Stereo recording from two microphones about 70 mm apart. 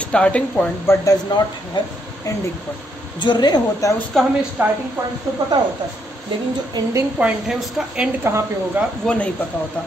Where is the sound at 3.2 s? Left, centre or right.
Left.